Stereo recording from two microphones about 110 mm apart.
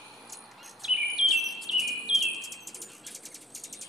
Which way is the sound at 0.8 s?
Centre (ahead or behind).